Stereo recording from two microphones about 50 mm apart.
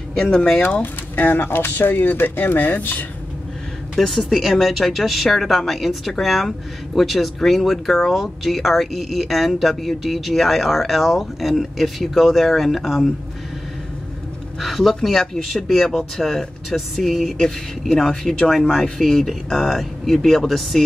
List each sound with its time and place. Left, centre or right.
0.2 s speech: centre
1.1 s speech: left
3.9 s speech: centre
4.3 s speech: centre
14.6 s speech: centre